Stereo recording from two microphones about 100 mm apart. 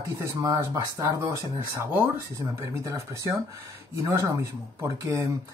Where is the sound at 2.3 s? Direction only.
30° right (ahead or behind).